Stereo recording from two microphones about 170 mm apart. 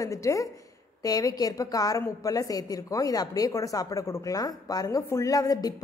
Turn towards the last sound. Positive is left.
turn(degrees=20)  # may be behind; listen again after turning